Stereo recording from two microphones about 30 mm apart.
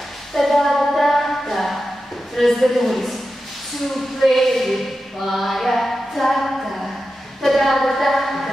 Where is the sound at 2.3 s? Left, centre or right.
Centre.